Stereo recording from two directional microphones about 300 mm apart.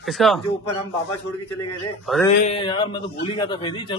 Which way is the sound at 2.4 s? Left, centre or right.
Centre.